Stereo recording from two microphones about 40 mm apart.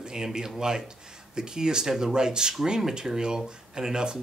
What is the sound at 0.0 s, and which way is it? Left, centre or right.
Speech, centre.